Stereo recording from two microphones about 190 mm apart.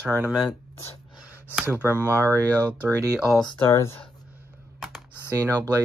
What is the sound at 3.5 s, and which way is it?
Speech, 15° left (ahead or behind).